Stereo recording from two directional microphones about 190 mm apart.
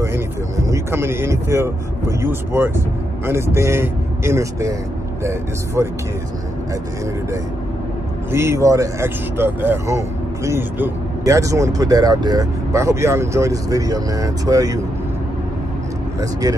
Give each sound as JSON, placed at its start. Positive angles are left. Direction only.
{"t": 0.0, "sound": "speech", "side_deg": -15}
{"t": 5.8, "sound": "speech", "side_deg": -15}
{"t": 8.3, "sound": "speech", "side_deg": -15}
{"t": 16.2, "sound": "speech", "side_deg": -15}